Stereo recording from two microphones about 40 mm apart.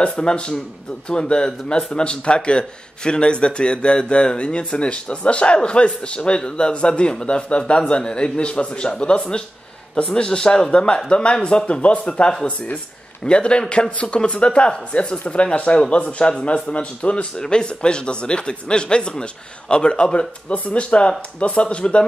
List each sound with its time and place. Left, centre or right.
0.0 s a man's voice: left
17.4 s a man's voice: left
20.5 s a man's voice: left